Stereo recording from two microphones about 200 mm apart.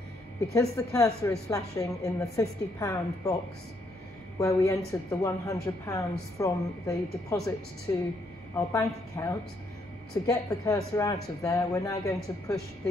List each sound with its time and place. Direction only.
0.5 s speech: 15° left (ahead or behind)
4.4 s speech: 15° left (ahead or behind)